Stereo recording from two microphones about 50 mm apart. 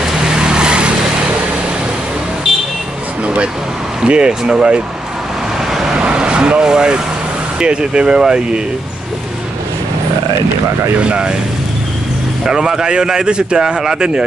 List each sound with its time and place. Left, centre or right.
0.0 s vehicle: centre
4.0 s a man's voice: centre
5.9 s vehicle: right
7.5 s a man's voice: centre
11.0 s speech: right
12.4 s a man's voice: centre